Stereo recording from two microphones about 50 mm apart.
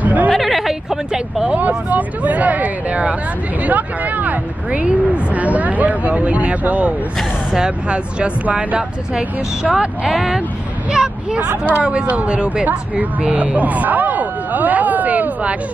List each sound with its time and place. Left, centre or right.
0.0 s hubbub: right
0.3 s a sound: centre
1.5 s speech: right; by 10.4 s centre
10.9 s a sound: centre
11.8 s speech: right
12.6 s vehicle: right